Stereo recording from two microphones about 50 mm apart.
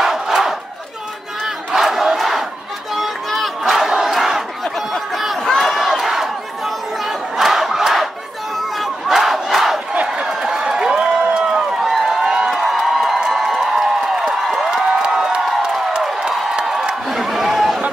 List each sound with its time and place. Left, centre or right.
0.0 s battle cry: centre
1.4 s crowd: centre
2.9 s battle cry: centre
5.1 s crowd: centre
8.5 s battle cry: centre
10.2 s a sound: centre